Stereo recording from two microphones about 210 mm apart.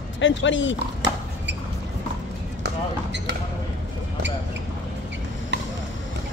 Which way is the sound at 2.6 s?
55° right (ahead or behind).